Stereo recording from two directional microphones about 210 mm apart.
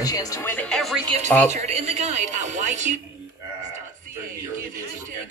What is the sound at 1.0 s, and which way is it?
Speech, 30° right (ahead or behind).